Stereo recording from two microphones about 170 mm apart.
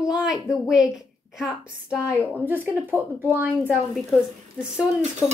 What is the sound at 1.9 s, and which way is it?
Speech, 15° left (ahead or behind).